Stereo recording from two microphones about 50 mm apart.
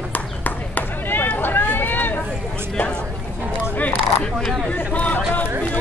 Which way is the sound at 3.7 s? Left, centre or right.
Left.